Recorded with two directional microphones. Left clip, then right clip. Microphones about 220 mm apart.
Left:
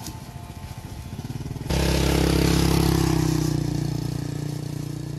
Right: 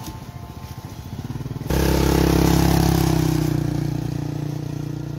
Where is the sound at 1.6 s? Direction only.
35° right (ahead or behind).